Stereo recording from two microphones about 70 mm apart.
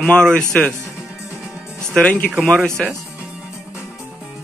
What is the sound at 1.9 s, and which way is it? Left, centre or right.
Speech, centre.